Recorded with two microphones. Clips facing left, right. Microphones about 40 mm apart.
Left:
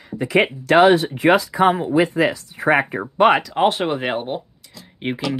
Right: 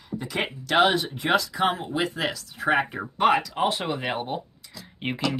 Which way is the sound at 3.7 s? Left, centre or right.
Left.